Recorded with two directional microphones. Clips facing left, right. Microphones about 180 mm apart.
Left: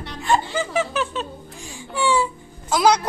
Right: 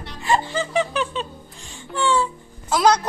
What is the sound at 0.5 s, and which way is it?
Speech, 10° left (ahead or behind).